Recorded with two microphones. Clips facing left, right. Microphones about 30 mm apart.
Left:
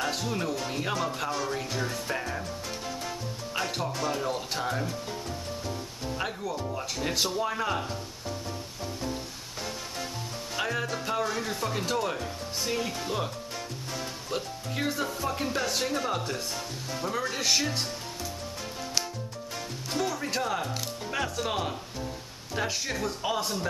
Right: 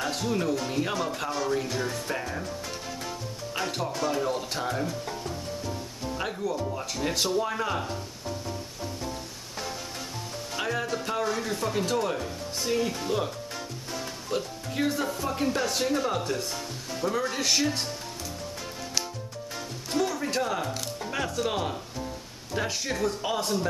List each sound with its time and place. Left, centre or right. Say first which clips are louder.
0.0 s speech: right 2 dB; centre
3.5 s speech: right 1 dB; centre
6.1 s speech: right 3 dB; centre
10.5 s speech: right 1 dB; centre
14.3 s speech: right 3 dB; centre
19.9 s speech: right 3 dB; centre